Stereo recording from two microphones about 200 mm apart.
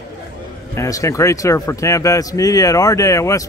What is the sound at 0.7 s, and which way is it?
A man's voice, 15° left (ahead or behind).